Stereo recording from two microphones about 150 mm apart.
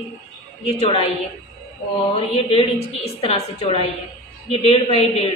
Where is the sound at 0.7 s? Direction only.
40° left (ahead or behind).